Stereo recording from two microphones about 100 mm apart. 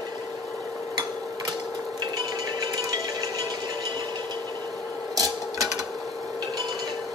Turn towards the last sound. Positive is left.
turn(degrees=-35)  # may be behind; listen again after turning